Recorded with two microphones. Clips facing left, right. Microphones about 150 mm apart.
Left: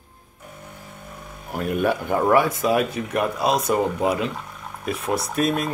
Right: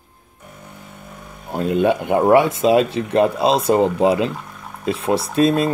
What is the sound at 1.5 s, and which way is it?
Speech, 25° right (ahead or behind).